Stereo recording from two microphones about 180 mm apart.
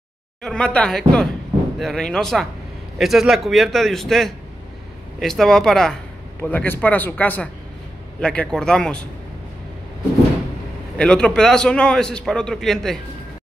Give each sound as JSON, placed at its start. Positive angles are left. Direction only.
{"t": 0.4, "sound": "a man's voice", "side_deg": 5}
{"t": 11.0, "sound": "a man's voice", "side_deg": 5}